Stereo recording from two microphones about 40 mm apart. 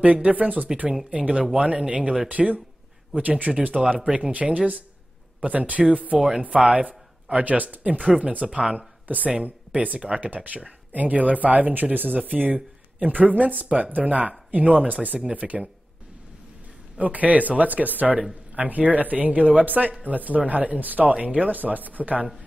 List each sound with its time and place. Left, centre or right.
0.0 s speech: right
1.8 s speech: right
6.1 s speech: centre
6.4 s a man's voice: right
9.0 s speech: right
9.9 s speech: right
10.2 s speech: right
17.0 s speech: right
21.1 s speech: right